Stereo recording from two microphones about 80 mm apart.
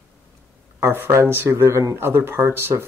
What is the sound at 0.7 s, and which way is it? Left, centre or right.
Speech, right.